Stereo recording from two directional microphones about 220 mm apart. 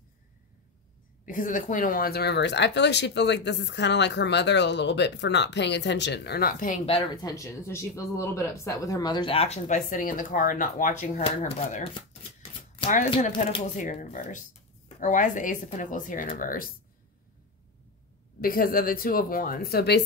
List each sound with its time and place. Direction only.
1.2 s speech: 35° left (ahead or behind)
6.9 s speech: 20° left (ahead or behind); by 16.7 s 40° left (ahead or behind)
18.4 s speech: 40° left (ahead or behind)